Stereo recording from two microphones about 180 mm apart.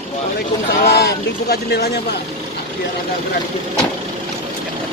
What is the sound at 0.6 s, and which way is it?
Speech, 60° left (ahead or behind).